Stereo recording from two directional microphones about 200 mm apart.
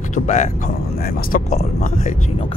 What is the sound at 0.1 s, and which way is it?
Speech, 40° left (ahead or behind).